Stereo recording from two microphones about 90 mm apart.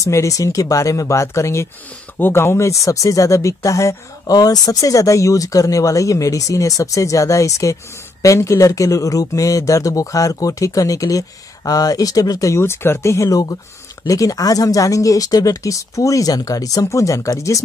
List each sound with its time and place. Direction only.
0.0 s speech: 35° left (ahead or behind)